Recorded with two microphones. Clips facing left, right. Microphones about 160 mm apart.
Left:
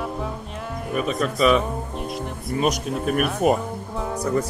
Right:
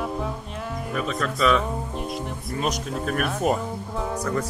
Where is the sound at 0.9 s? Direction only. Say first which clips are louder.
Left 4 dB; 15° left (ahead or behind).